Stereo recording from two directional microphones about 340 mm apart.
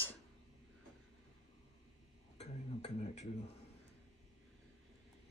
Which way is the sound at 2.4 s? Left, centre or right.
Centre.